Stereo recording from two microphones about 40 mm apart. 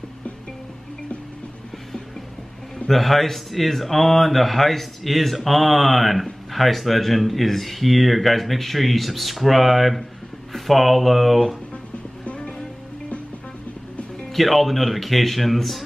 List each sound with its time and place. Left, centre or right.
2.9 s speech: centre
12.3 s music: left
14.3 s speech: centre